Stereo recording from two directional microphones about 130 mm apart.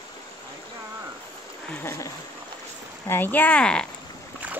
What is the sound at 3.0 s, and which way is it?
Speech, 15° left (ahead or behind).